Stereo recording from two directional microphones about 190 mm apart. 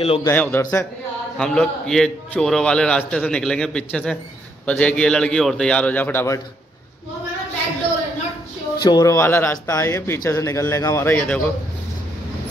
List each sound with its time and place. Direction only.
0.2 s speech: 10° left (ahead or behind)
1.4 s a man's voice: centre (ahead or behind)
8.7 s speech: 25° left (ahead or behind); by 11.4 s 5° left (ahead or behind)